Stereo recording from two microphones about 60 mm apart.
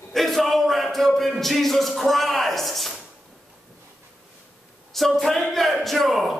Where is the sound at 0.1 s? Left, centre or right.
Centre.